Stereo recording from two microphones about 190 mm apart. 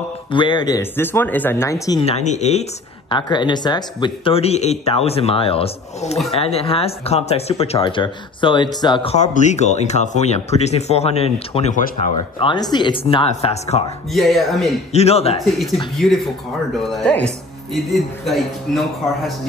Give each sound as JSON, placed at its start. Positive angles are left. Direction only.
{"t": 0.3, "sound": "speech", "side_deg": 25}
{"t": 2.0, "sound": "speech", "side_deg": 35}
{"t": 3.1, "sound": "speech", "side_deg": 25}
{"t": 12.4, "sound": "speech", "side_deg": 25}
{"t": 14.1, "sound": "speech", "side_deg": 0}
{"t": 14.9, "sound": "speech", "side_deg": 35}
{"t": 16.0, "sound": "speech", "side_deg": 0}